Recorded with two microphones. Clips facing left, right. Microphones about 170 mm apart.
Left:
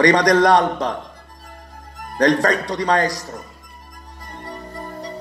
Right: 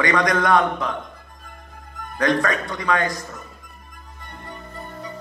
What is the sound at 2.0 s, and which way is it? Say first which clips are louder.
A man's voice: left 4 dB; 35° left (ahead or behind).